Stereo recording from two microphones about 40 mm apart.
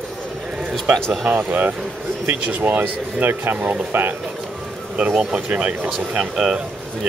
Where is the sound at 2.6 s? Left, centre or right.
Right.